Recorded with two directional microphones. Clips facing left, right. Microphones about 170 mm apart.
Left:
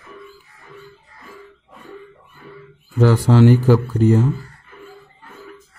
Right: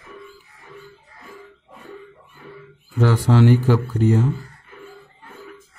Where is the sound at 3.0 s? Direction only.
40° left (ahead or behind).